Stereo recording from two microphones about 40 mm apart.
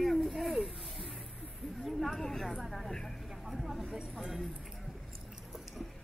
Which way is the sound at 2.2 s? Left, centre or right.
Centre.